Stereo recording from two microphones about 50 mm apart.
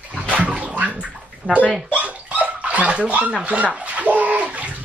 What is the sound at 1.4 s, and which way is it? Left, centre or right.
Speech, right.